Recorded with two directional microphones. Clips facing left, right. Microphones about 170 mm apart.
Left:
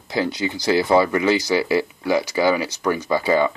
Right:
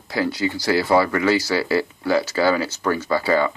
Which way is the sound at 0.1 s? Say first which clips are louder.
Even; 20° left (ahead or behind).